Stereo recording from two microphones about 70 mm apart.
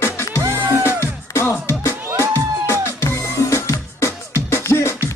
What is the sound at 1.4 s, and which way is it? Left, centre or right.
Music, left.